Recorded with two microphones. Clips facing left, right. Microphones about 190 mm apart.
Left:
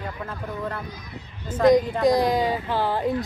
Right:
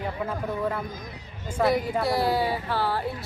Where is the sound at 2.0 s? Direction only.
15° left (ahead or behind).